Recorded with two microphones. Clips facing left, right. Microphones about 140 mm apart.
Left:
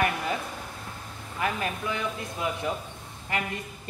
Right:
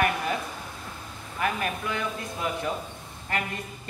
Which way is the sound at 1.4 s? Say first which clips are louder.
Right 1 dB; 25° left (ahead or behind).